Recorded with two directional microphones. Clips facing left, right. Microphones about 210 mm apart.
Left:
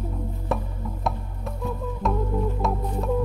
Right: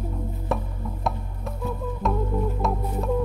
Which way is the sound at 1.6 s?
Centre (ahead or behind).